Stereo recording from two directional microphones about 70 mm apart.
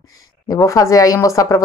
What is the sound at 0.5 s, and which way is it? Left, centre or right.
A woman's voice, left.